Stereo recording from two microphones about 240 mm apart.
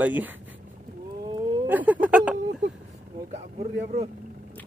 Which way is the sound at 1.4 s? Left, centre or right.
Centre.